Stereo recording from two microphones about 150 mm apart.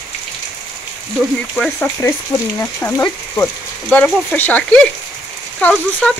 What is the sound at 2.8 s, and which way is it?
Speech, 15° left (ahead or behind).